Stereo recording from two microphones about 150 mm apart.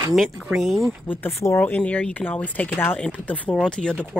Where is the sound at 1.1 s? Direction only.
15° left (ahead or behind).